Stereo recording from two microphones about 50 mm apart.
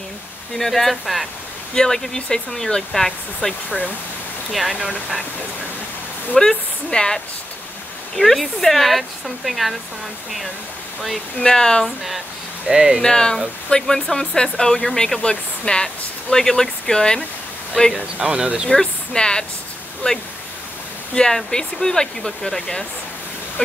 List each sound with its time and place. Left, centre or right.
0.6 s speech: centre
3.4 s speech: left
4.5 s speech: centre
6.3 s speech: centre
8.2 s speech: centre
11.4 s speech: centre
12.6 s speech: centre
13.0 s speech: centre
17.9 s speech: centre
18.7 s speech: centre